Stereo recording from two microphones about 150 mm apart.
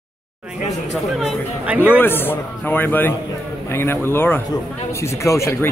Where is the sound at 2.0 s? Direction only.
15° left (ahead or behind).